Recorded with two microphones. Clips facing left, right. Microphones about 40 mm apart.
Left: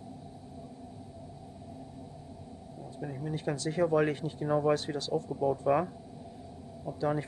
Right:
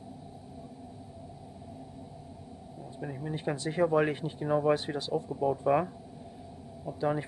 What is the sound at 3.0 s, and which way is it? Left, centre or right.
Speech, centre.